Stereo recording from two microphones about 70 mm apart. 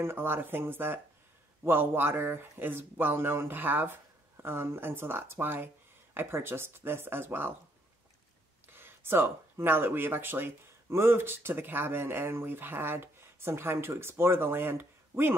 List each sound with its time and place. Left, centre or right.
0.0 s speech: right
8.7 s speech: right